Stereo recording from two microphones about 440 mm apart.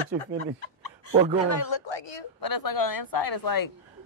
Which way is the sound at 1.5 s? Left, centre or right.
Left.